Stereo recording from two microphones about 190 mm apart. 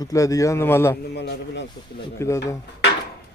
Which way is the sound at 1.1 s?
65° left (ahead or behind).